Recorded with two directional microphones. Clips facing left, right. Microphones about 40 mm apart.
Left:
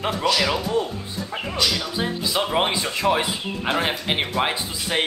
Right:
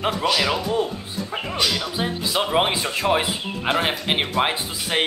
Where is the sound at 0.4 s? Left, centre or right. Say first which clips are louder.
Even; centre.